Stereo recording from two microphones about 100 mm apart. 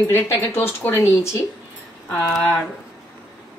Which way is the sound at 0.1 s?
25° left (ahead or behind).